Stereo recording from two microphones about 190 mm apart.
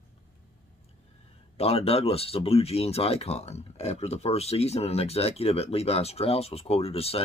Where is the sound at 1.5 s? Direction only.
30° left (ahead or behind).